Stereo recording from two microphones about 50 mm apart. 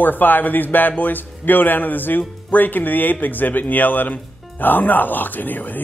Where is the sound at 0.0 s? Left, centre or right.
Left.